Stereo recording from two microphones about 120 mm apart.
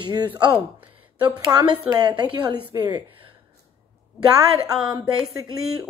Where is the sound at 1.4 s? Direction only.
30° right (ahead or behind).